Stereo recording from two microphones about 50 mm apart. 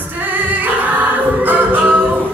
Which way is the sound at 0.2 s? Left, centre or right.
Right.